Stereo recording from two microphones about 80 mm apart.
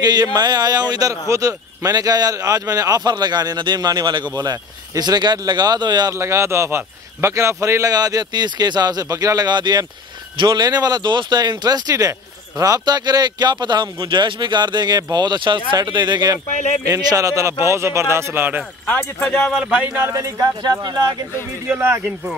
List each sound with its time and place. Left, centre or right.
0.0 s a man's voice: right
6.1 s a man's voice: right
15.8 s a man's voice: right
16.8 s a man's voice: right
18.9 s speech: centre
19.6 s speech: centre
19.9 s a man's voice: right
20.2 s a man's voice: right
20.8 s a man's voice: right
21.6 s speech: right